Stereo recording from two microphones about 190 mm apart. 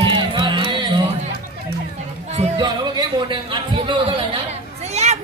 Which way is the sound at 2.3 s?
30° right (ahead or behind).